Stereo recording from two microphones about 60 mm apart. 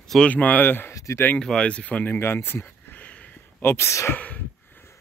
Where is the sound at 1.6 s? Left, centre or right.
Left.